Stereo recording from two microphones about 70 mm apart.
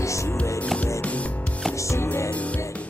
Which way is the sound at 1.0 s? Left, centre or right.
Centre.